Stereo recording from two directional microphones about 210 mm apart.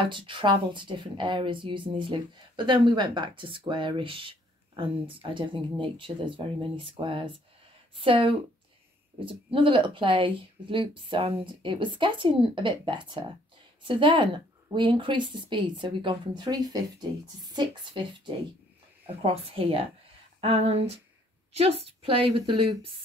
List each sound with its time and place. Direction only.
0.0 s speech: 25° right (ahead or behind)
20.3 s a sound: 25° right (ahead or behind)
21.5 s speech: 30° right (ahead or behind)